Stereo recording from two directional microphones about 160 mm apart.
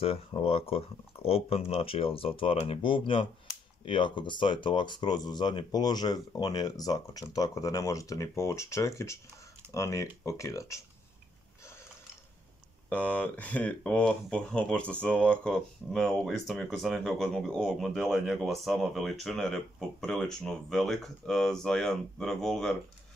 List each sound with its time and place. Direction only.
0.0 s speech: 35° left (ahead or behind); by 10.8 s 20° left (ahead or behind)
12.9 s speech: 10° left (ahead or behind)